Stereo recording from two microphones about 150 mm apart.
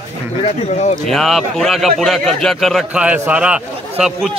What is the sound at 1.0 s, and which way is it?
Speech, centre (ahead or behind).